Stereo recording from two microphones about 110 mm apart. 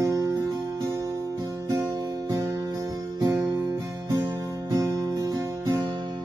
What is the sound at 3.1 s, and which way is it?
Music, 35° right (ahead or behind).